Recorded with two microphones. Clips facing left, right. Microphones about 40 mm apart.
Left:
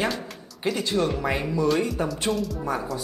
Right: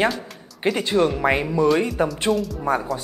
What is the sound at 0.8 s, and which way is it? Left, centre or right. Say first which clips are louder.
Speech: right 5 dB; right.